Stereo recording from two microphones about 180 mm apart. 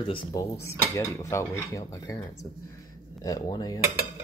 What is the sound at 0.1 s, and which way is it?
Speech, 25° left (ahead or behind).